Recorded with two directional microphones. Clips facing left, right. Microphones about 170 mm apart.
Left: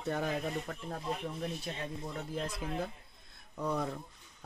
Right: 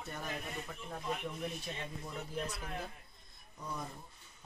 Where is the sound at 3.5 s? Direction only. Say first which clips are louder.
Left 9 dB; 65° left (ahead or behind).